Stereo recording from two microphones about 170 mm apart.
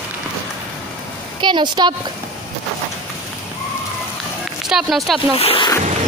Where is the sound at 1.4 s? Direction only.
25° right (ahead or behind).